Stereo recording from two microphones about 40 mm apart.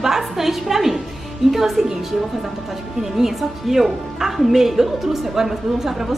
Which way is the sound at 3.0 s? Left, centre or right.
Centre.